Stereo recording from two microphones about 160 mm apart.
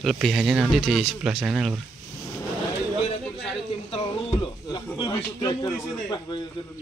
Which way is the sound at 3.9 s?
30° left (ahead or behind).